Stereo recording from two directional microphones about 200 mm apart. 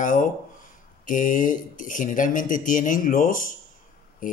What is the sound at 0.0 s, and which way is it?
Speech, 40° left (ahead or behind).